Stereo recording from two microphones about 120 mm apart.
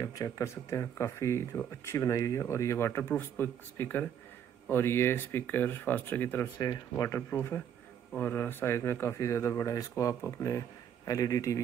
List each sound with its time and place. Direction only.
0.0 s speech: 30° left (ahead or behind)
6.6 s speech: 30° left (ahead or behind)